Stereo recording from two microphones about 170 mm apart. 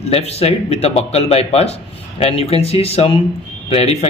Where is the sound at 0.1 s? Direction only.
35° left (ahead or behind).